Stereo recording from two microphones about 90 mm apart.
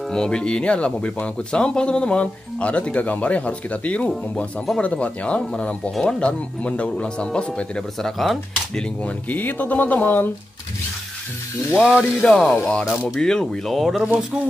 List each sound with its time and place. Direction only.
0.1 s speech: 10° left (ahead or behind)
12.2 s speech: 5° left (ahead or behind)
14.0 s speech: 15° right (ahead or behind)